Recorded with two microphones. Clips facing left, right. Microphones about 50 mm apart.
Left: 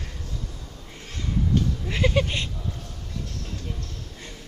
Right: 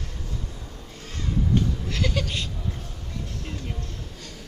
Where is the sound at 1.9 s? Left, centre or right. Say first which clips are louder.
Left 4 dB; left.